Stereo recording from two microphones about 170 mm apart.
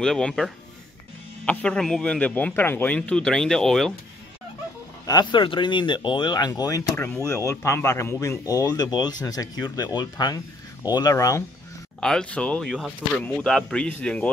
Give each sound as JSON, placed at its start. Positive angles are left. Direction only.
{"t": 0.0, "sound": "a man's voice", "side_deg": 5}
{"t": 5.0, "sound": "speech", "side_deg": 25}
{"t": 12.0, "sound": "a man's voice", "side_deg": 5}